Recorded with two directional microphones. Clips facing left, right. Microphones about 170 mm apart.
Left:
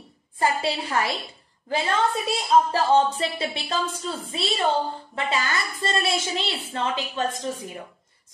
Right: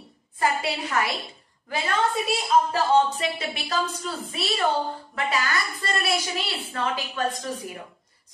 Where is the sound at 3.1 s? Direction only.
30° left (ahead or behind).